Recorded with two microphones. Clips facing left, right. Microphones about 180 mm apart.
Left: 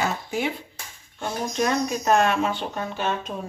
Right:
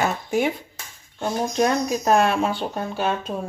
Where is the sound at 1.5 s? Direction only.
40° right (ahead or behind).